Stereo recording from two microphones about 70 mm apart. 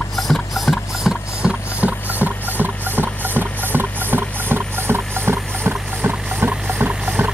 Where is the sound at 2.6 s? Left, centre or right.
Right.